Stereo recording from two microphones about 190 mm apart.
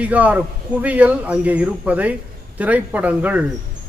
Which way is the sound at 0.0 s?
10° right (ahead or behind).